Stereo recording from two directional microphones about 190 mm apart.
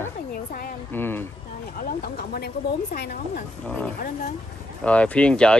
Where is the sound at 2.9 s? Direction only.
55° left (ahead or behind).